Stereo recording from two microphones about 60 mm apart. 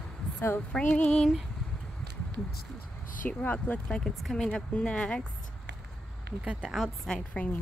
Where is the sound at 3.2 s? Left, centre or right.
Left.